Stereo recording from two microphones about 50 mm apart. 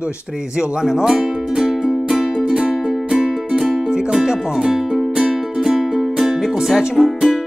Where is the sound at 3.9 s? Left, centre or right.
Centre.